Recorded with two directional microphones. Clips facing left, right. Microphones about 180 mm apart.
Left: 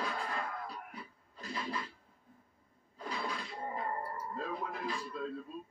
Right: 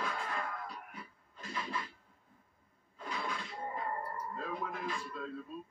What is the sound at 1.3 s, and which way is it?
Scratch, 35° left (ahead or behind).